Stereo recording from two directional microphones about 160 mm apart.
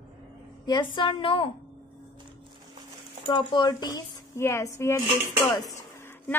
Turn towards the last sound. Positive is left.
turn(degrees=15)  # may be behind; listen again after turning